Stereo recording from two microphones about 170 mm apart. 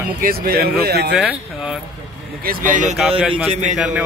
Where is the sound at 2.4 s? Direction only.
55° right (ahead or behind).